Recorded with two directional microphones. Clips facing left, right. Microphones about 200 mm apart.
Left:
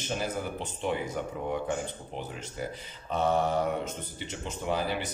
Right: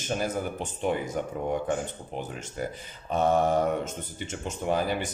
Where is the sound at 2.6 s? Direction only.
50° right (ahead or behind).